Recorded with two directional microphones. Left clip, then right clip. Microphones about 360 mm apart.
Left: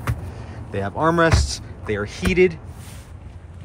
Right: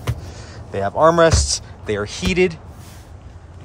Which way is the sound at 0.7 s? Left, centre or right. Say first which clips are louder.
Right 6 dB; centre.